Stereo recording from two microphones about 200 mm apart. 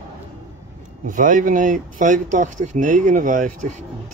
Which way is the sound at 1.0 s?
40° right (ahead or behind).